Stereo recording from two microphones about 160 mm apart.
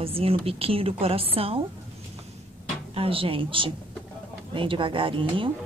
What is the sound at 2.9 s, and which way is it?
A woman's voice, 35° right (ahead or behind).